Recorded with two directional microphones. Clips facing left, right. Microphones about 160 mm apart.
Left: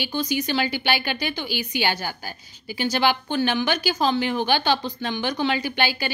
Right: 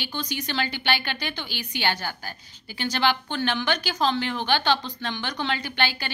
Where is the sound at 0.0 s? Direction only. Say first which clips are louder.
Left 6 dB; 10° left (ahead or behind).